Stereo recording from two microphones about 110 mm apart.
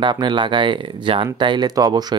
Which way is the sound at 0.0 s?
45° right (ahead or behind).